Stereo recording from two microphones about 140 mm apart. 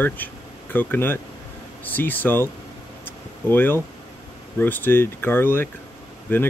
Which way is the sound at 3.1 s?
15° left (ahead or behind).